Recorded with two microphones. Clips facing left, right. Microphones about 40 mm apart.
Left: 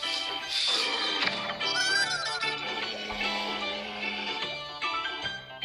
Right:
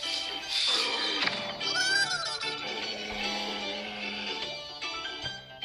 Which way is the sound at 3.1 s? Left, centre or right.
Centre.